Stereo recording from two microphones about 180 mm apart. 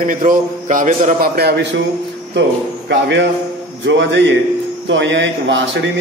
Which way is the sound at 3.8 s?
90° right.